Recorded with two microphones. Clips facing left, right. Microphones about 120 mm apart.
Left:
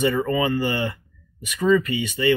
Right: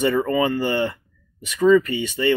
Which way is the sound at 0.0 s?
35° right (ahead or behind).